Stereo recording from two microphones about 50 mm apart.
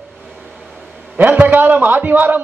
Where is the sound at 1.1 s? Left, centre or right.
Right.